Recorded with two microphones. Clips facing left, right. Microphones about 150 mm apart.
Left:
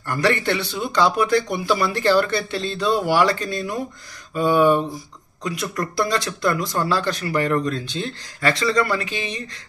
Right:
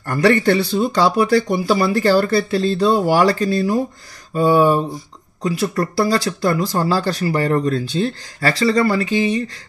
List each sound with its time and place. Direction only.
0.0 s speech: 40° right (ahead or behind)